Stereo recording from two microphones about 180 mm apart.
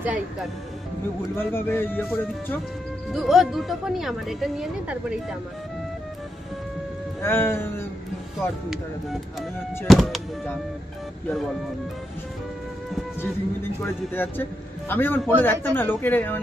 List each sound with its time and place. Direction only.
0.0 s speech: 5° right (ahead or behind)
1.3 s a man's voice: 15° left (ahead or behind)
3.1 s speech: centre (ahead or behind)
7.2 s a man's voice: 15° left (ahead or behind)
8.4 s speech: centre (ahead or behind)
14.1 s a man's voice: 10° left (ahead or behind)